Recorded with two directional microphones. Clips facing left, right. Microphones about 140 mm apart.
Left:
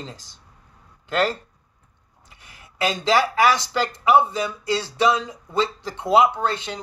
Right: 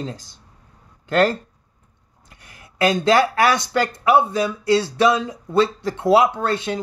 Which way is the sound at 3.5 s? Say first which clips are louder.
Right 3 dB; 50° right (ahead or behind).